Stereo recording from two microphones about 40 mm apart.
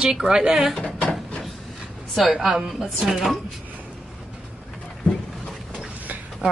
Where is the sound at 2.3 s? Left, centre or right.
Centre.